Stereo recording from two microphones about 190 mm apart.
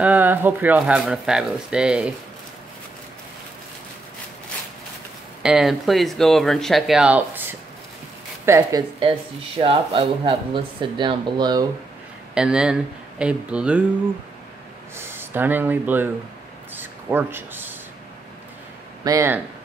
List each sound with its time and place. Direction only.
0.0 s speech: 10° right (ahead or behind)
5.4 s speech: 5° right (ahead or behind)
8.5 s speech: 15° right (ahead or behind)
9.6 s speech: 30° right (ahead or behind)
12.4 s speech: 5° right (ahead or behind)
15.0 s speech: 10° right (ahead or behind)
16.7 s a sound: 10° right (ahead or behind)
19.0 s speech: 15° right (ahead or behind)